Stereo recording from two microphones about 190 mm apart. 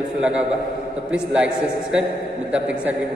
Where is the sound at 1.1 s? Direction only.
5° right (ahead or behind).